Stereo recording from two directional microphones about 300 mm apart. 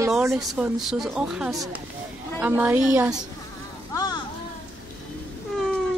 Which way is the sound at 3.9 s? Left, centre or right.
Centre.